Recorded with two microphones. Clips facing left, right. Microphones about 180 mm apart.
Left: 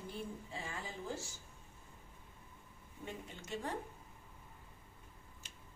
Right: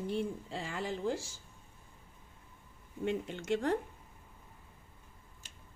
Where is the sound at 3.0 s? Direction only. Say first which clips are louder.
Right 13 dB; 70° right (ahead or behind).